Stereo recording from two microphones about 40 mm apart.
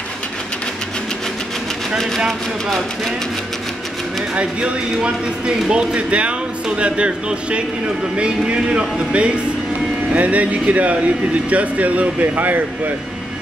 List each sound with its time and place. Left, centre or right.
5.7 s speech: right